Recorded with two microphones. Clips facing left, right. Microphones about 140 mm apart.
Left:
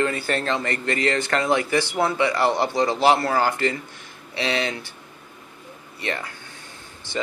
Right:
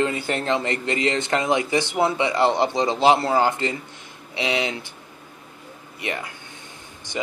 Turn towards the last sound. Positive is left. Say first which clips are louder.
# even
turn(degrees=-15)  # may be behind; listen again after turning